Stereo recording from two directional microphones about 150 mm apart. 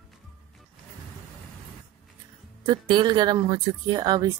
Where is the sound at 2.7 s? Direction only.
30° right (ahead or behind).